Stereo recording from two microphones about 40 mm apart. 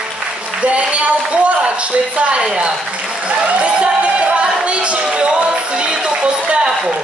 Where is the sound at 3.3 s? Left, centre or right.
Right.